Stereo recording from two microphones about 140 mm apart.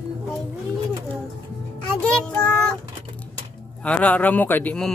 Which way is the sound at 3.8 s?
10° left (ahead or behind).